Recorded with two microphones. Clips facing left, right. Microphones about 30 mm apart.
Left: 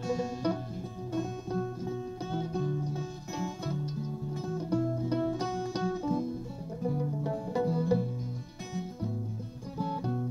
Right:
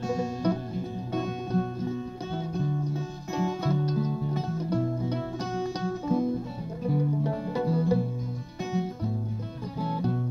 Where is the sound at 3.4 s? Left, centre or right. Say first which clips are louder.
Right 8 dB; right.